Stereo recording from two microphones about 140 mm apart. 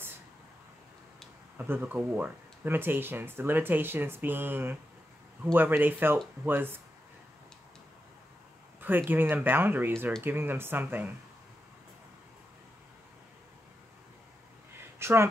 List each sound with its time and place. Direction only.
1.6 s speech: 15° right (ahead or behind)
8.8 s speech: 15° right (ahead or behind)
15.0 s a sound: 20° right (ahead or behind)